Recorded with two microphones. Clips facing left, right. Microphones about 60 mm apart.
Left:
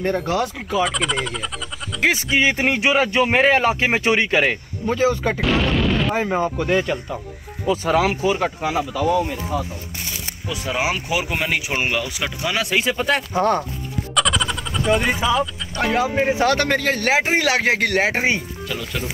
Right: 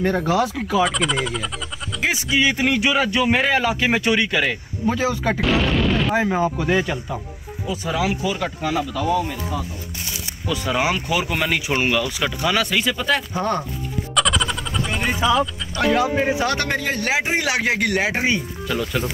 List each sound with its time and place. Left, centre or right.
0.0 s speech: centre
2.0 s speech: left
4.8 s speech: centre
7.7 s speech: left
8.5 s speech: left
8.9 s speech: centre
10.7 s speech: centre
14.1 s music: centre
15.1 s speech: centre
15.7 s speech: left
16.3 s speech: left
18.7 s speech: centre